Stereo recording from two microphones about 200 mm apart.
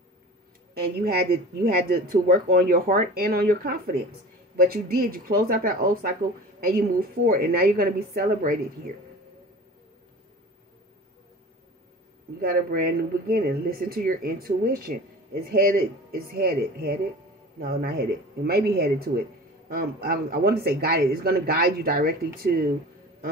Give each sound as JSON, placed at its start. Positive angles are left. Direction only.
{"t": 0.7, "sound": "speech", "side_deg": -50}
{"t": 12.4, "sound": "speech", "side_deg": -50}